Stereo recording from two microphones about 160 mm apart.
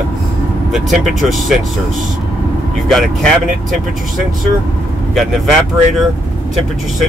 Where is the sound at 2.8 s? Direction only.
Centre (ahead or behind).